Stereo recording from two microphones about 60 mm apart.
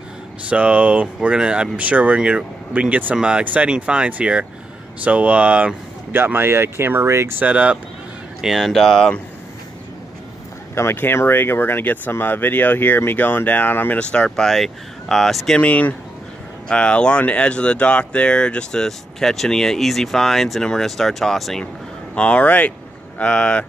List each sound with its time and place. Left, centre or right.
0.5 s speech: right
6.1 s speech: right
7.4 s speech: right
8.4 s speech: centre
8.6 s speech: centre
10.7 s speech: left
13.9 s speech: centre
14.4 s speech: centre
15.6 s speech: left; by 21.6 s centre
22.1 s speech: centre